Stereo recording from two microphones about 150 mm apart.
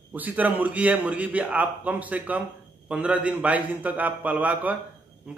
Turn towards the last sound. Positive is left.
turn(degrees=-10)  # may be behind; listen again after turning